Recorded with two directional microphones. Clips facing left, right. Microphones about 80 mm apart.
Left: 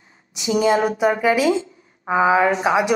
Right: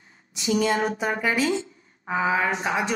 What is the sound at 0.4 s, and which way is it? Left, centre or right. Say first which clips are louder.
A woman's voice: left 5 dB; left.